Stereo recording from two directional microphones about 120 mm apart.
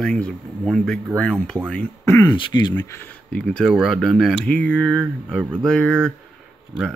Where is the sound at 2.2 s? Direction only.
40° left (ahead or behind).